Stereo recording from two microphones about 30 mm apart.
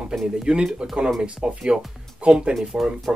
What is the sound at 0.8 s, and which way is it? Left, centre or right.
Speech, right.